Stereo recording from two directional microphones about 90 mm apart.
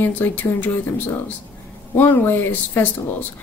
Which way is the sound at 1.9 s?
20° left (ahead or behind).